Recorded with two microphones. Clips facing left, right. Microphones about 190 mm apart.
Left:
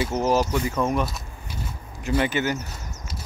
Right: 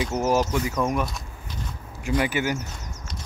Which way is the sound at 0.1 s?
10° right (ahead or behind).